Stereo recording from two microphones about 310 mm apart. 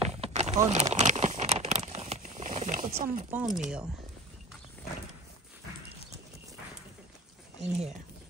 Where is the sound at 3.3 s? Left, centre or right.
Centre.